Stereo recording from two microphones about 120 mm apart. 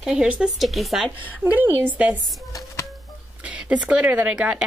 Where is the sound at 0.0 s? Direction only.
5° right (ahead or behind).